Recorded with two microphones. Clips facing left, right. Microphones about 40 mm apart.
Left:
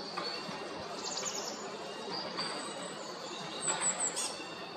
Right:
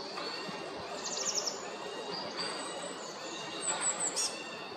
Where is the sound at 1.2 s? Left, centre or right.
Left.